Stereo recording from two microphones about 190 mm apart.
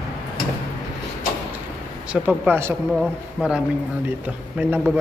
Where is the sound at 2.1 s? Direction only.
10° right (ahead or behind).